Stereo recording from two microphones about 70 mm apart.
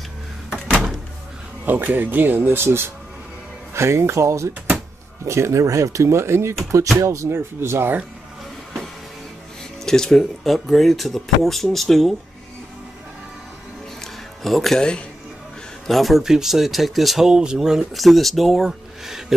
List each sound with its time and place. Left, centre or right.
1.7 s speech: right
9.8 s speech: centre
14.0 s speech: centre
15.9 s speech: centre